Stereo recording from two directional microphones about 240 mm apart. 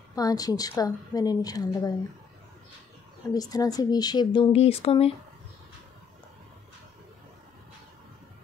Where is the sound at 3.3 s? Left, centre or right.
Centre.